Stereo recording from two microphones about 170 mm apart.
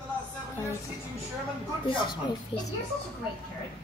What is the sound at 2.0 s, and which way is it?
Speech, 25° left (ahead or behind).